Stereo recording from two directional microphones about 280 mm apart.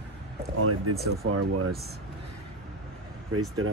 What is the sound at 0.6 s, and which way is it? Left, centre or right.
Speech, right.